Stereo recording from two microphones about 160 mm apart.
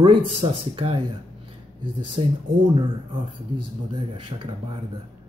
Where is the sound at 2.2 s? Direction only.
40° right (ahead or behind).